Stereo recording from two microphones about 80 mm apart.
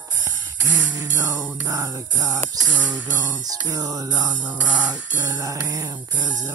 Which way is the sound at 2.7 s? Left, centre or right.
Centre.